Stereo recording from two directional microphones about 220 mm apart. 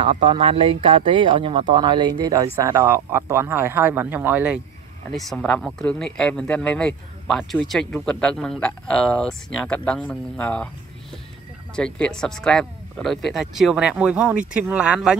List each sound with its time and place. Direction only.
0.0 s speech: 20° right (ahead or behind); by 10.7 s 5° left (ahead or behind)
11.7 s speech: 5° left (ahead or behind)